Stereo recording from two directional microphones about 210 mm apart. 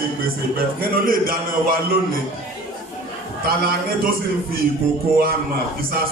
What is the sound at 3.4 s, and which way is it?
Speech, 45° right (ahead or behind).